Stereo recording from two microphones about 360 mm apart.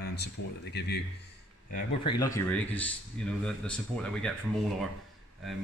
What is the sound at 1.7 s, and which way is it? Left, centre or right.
A man's voice, centre.